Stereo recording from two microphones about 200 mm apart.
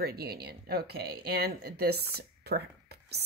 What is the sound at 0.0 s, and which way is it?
A woman's voice, 50° right (ahead or behind).